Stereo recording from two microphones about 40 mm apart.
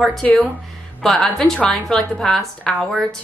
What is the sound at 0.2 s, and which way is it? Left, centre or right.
Speech, centre.